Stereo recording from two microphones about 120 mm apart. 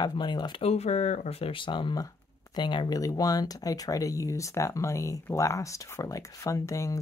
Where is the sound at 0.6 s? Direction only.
60° left (ahead or behind); by 6.9 s 25° left (ahead or behind).